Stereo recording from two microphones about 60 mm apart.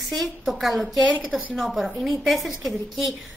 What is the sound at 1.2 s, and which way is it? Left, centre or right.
Speech, right.